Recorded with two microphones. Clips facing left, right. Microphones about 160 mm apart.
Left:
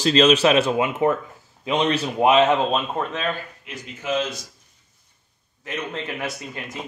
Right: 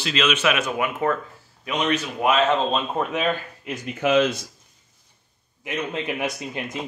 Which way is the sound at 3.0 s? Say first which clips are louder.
Right 1 dB; 5° right (ahead or behind).